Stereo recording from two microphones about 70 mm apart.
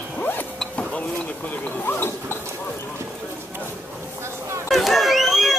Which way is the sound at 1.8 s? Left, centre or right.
Left.